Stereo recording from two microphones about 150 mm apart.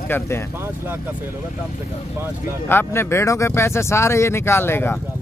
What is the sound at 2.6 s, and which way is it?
Speech, 15° left (ahead or behind).